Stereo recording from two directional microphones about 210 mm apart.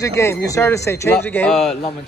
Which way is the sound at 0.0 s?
15° left (ahead or behind).